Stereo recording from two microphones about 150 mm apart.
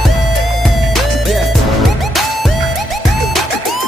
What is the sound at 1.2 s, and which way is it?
Music, centre (ahead or behind).